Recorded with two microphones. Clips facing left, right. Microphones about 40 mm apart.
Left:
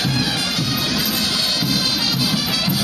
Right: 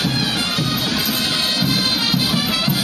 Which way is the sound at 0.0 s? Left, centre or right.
Right.